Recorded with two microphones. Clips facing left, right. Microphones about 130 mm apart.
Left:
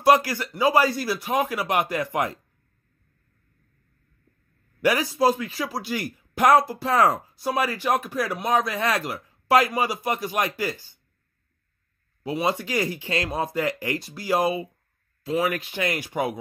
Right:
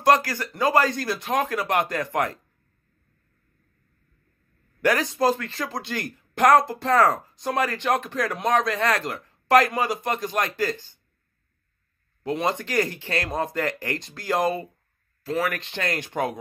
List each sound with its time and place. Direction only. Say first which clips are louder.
0.0 s a man's voice: left 1 dB; 10° left (ahead or behind)
4.8 s a man's voice: left 1 dB; 10° left (ahead or behind)
12.2 s a man's voice: even; 10° left (ahead or behind)